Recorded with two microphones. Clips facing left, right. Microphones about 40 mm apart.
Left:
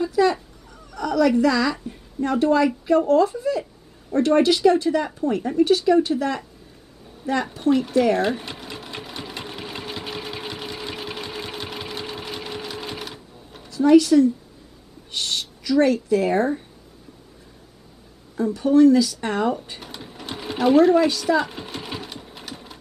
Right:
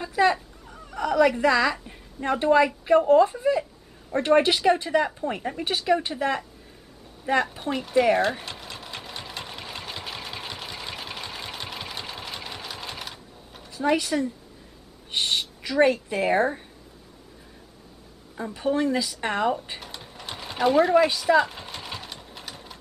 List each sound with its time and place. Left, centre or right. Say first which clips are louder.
0.0 s a woman's voice: left 2 dB; right
7.5 s speech: left 4 dB; centre
8.2 s sewing machine: left 2 dB; centre
13.7 s speech: left 9 dB; right
18.4 s a woman's voice: left 10 dB; right
19.8 s sewing machine: left 3 dB; centre
21.1 s speech: even; centre
21.4 s sewing machine: right 1 dB; centre